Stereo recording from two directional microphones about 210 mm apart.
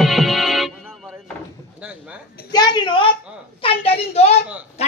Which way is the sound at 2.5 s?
20° left (ahead or behind).